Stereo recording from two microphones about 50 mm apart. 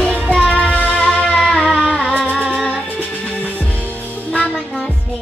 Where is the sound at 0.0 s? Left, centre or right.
Left.